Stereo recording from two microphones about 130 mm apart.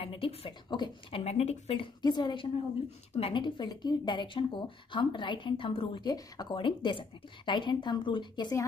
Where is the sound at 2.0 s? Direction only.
35° left (ahead or behind).